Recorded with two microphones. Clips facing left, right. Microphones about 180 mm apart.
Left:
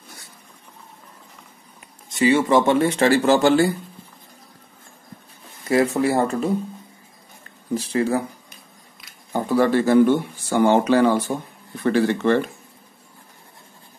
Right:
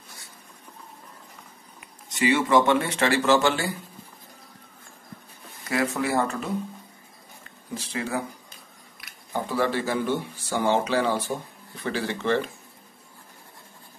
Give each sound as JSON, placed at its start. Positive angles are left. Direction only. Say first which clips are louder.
{"t": 2.0, "sound": "speech", "louder": "left 5 dB", "side_deg": 30}
{"t": 5.7, "sound": "speech", "louder": "left 7 dB", "side_deg": 30}
{"t": 7.7, "sound": "speech", "louder": "left 9 dB", "side_deg": 35}
{"t": 9.3, "sound": "speech", "louder": "left 7 dB", "side_deg": 50}